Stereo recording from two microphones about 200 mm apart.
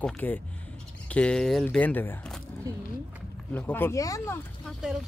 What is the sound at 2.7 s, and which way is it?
Speech, 20° right (ahead or behind).